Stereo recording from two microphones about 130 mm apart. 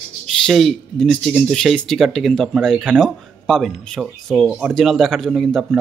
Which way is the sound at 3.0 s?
Centre (ahead or behind).